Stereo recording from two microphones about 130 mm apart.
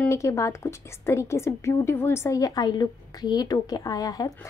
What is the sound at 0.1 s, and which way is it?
A woman's voice, 25° left (ahead or behind).